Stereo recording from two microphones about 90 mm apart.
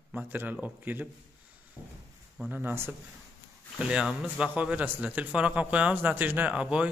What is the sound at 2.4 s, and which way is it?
Speech, 15° right (ahead or behind).